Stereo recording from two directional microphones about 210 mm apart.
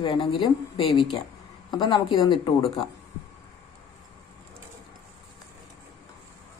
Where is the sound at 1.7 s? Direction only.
20° left (ahead or behind).